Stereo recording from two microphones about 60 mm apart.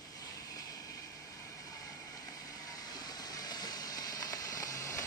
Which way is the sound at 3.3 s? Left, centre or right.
Left.